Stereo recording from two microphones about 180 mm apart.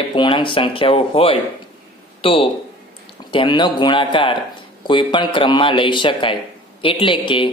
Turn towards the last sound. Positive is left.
turn(degrees=30)  # may be behind; listen again after turning